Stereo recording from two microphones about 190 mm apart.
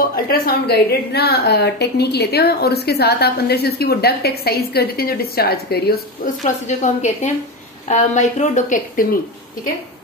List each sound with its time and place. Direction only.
0.1 s a woman's voice: 50° left (ahead or behind)
6.4 s a woman's voice: 40° left (ahead or behind)